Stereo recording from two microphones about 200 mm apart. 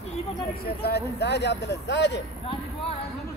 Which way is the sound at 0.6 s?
50° left (ahead or behind).